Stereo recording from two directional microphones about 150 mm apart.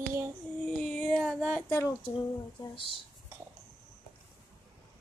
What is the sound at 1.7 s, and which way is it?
Female singing, 15° left (ahead or behind).